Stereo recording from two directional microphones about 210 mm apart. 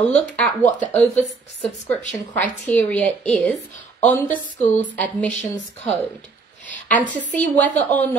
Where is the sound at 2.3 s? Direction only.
5° left (ahead or behind).